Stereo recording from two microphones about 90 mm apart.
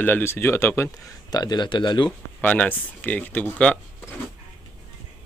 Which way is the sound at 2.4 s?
20° left (ahead or behind).